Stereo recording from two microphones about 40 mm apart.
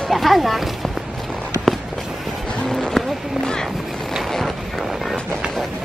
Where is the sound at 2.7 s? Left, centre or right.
Centre.